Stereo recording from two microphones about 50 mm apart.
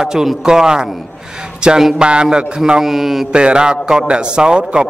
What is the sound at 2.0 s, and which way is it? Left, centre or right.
A man's voice, centre.